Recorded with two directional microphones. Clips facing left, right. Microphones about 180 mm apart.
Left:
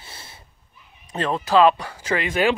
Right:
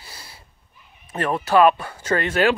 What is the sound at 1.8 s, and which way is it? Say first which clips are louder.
Speech: right 2 dB; 15° left (ahead or behind).